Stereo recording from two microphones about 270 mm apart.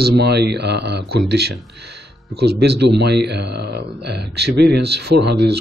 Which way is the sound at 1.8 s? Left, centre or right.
Right.